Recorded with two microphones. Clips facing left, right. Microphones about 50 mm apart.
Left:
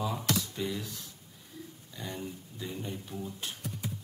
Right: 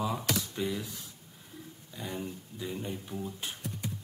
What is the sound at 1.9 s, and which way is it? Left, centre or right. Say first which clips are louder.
Speech: right 2 dB; centre.